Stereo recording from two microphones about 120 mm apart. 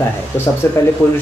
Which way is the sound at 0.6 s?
20° left (ahead or behind).